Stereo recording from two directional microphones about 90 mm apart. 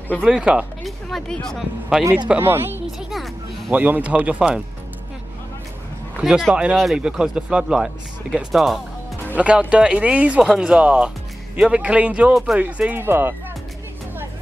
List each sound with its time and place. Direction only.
0.2 s speech: 10° right (ahead or behind)
0.8 s speech: 5° left (ahead or behind)
2.2 s speech: 20° right (ahead or behind)
3.0 s music: centre (ahead or behind)
3.7 s speech: 20° right (ahead or behind)
6.2 s speech: 5° right (ahead or behind)
6.7 s speech: centre (ahead or behind)
7.0 s speech: 10° right (ahead or behind)
9.3 s speech: 15° right (ahead or behind)